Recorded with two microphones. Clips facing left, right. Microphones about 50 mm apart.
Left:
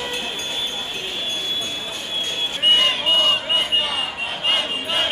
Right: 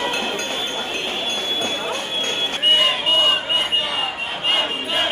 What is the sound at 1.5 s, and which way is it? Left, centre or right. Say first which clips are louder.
Clip-clop: right 5 dB; right.